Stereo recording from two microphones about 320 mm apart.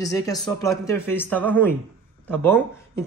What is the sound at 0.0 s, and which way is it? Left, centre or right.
A man's voice, centre.